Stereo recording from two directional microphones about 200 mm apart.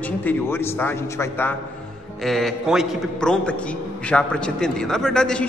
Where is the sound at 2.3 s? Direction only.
Centre (ahead or behind).